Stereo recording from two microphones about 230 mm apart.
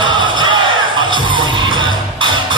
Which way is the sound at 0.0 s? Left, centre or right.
Right.